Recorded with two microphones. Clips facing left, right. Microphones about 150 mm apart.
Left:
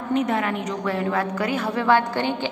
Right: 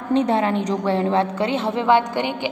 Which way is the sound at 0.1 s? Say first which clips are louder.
Right 4 dB; 30° right (ahead or behind).